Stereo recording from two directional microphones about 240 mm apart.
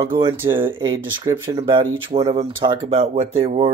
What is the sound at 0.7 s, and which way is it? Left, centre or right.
Speech, centre.